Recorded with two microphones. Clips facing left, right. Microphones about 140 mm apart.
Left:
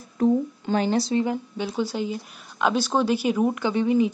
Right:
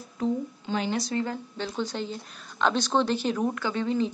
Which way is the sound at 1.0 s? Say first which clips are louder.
Left 6 dB; 15° left (ahead or behind).